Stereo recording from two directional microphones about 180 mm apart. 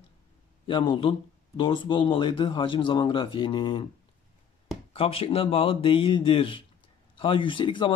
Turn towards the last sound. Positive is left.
turn(degrees=30)  # may be behind; listen again after turning